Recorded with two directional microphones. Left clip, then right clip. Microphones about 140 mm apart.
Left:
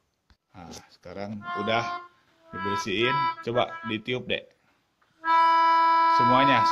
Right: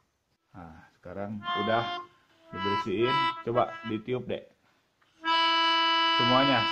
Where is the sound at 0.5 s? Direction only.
10° left (ahead or behind).